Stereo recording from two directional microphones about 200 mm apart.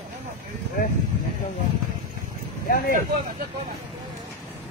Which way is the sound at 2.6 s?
45° left (ahead or behind).